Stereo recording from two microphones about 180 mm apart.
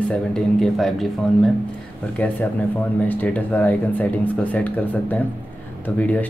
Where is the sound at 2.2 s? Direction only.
10° left (ahead or behind).